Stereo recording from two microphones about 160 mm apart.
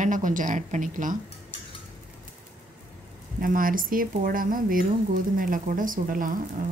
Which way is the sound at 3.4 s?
60° right (ahead or behind).